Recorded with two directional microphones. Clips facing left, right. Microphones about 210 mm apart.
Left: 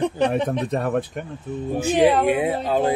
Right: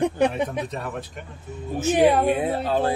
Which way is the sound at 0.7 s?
55° left (ahead or behind).